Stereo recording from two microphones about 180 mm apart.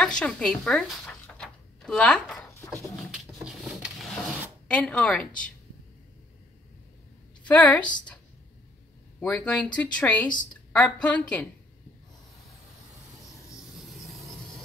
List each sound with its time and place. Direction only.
0.0 s speech: 5° left (ahead or behind)
1.0 s a sound: 10° left (ahead or behind)
3.1 s drawer open or close: 5° right (ahead or behind)
7.4 s a woman's voice: 5° left (ahead or behind)
9.2 s a woman's voice: 5° left (ahead or behind)
13.7 s a sound: centre (ahead or behind)